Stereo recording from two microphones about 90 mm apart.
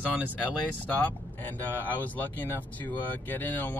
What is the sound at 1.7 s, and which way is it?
Speech, 20° left (ahead or behind).